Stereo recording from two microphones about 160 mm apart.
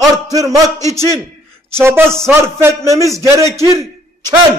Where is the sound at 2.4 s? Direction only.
15° right (ahead or behind).